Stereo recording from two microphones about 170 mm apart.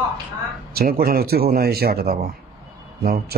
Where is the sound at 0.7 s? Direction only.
60° right (ahead or behind).